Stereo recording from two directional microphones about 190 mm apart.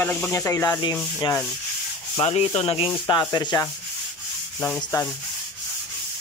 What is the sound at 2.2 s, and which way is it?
Rub, 30° left (ahead or behind).